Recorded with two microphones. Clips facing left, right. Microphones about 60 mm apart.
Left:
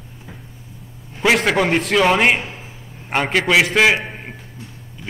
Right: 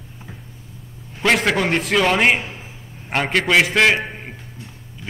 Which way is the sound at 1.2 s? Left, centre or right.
Centre.